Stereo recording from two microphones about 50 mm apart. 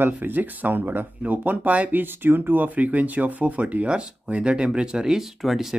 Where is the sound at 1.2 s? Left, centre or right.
Right.